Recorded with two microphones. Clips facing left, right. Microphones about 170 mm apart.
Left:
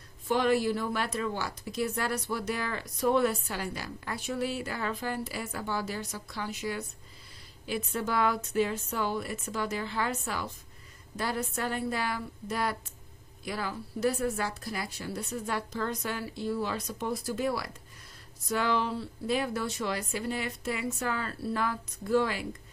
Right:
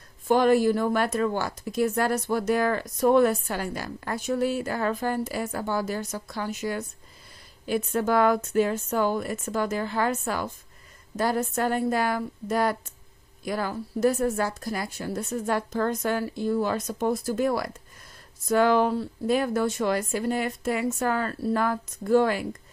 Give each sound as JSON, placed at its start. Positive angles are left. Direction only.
{"t": 0.3, "sound": "speech", "side_deg": -45}